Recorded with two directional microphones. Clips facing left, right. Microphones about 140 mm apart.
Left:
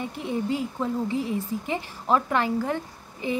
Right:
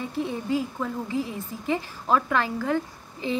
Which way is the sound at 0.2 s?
20° left (ahead or behind).